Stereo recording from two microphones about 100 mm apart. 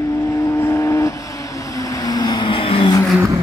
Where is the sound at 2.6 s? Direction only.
70° left (ahead or behind).